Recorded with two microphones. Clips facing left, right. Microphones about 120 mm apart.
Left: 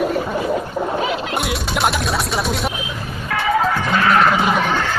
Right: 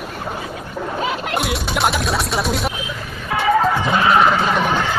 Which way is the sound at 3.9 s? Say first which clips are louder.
Even; 20° right (ahead or behind).